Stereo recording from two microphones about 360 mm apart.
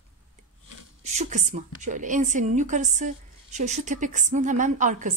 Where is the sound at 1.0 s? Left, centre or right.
Centre.